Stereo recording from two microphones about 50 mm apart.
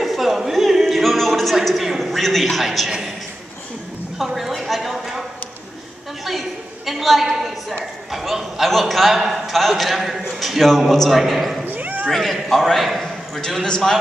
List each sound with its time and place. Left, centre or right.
0.0 s a sound: centre
4.2 s speech: centre
4.9 s clip-clop: centre
6.9 s a woman's voice: centre
11.6 s cat: right
12.1 s a man's voice: centre
13.4 s a man's voice: centre